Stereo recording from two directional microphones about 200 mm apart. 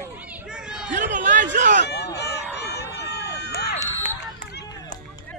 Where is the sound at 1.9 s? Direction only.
55° left (ahead or behind).